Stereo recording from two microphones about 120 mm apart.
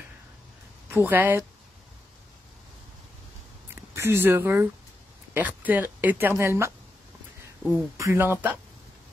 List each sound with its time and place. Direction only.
0.8 s speech: 15° right (ahead or behind)
3.7 s speech: 20° right (ahead or behind)
8.0 s speech: 20° right (ahead or behind)